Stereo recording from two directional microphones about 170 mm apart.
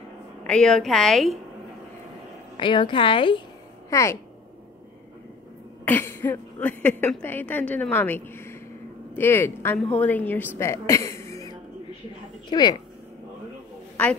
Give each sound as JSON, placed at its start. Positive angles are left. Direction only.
{"t": 0.5, "sound": "a woman's voice", "side_deg": 5}
{"t": 2.5, "sound": "a woman's voice", "side_deg": 30}
{"t": 3.9, "sound": "a woman's voice", "side_deg": 15}
{"t": 5.9, "sound": "a woman's voice", "side_deg": 10}
{"t": 14.0, "sound": "a woman's voice", "side_deg": 5}